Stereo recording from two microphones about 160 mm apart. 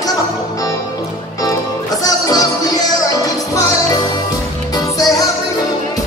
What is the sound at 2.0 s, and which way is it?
Music, 25° left (ahead or behind).